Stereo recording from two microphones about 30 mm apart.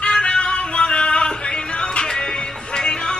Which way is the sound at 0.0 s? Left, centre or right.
Left.